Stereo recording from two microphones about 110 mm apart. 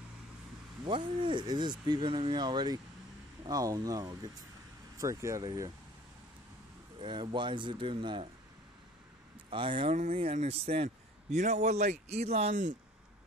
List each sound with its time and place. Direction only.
0.8 s speech: 50° right (ahead or behind); by 5.4 s 30° right (ahead or behind)
5.4 s speech: 40° right (ahead or behind)
7.0 s speech: 45° right (ahead or behind)
9.5 s speech: 50° right (ahead or behind)
9.9 s speech: 80° right
11.3 s speech: 90° right